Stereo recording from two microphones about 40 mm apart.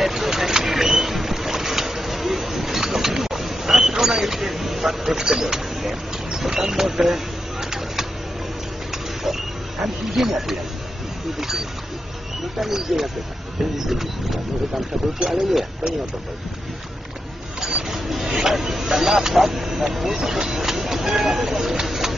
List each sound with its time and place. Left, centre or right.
0.0 s boat: centre
3.9 s a sound: centre
7.7 s vehicle: centre
10.1 s speech: centre
13.8 s printer: centre
15.1 s speech: centre
17.6 s a sound: right
17.9 s vehicle: centre